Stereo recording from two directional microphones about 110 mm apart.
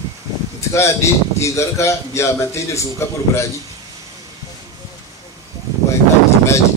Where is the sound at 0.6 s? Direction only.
25° left (ahead or behind).